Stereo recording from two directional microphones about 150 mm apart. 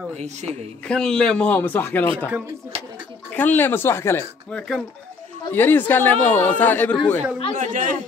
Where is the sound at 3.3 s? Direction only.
10° left (ahead or behind).